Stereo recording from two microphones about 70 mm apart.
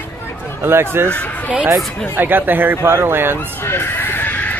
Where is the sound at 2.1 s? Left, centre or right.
Right.